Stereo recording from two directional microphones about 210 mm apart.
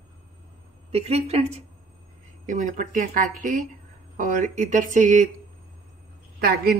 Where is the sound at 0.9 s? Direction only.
30° right (ahead or behind).